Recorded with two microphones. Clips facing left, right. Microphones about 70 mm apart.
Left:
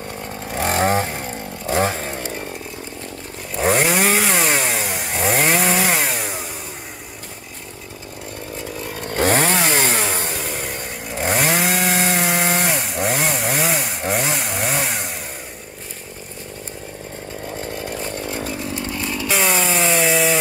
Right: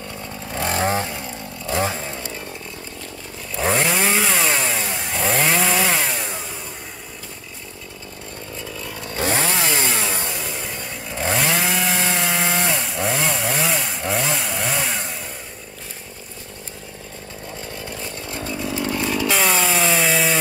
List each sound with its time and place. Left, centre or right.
0.1 s vehicle: left
0.5 s chainsaw: left
3.5 s chainsaw: centre
8.7 s chainsaw: left
9.1 s chainsaw: left
9.9 s chainsaw: left
17.7 s chainsaw: left
18.9 s chainsaw: centre
19.2 s chainsaw: centre